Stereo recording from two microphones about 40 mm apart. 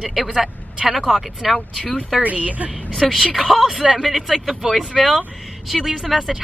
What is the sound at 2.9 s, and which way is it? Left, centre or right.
Speech, centre.